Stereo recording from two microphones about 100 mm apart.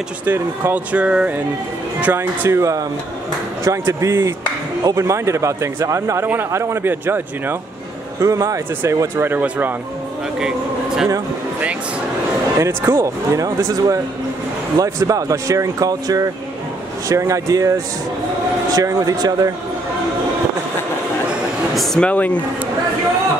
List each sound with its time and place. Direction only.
0.2 s speech: 15° right (ahead or behind)
2.1 s speech: 25° right (ahead or behind)
8.2 s speech: 35° right (ahead or behind)
12.5 s speech: 30° right (ahead or behind)
21.7 s speech: 10° left (ahead or behind)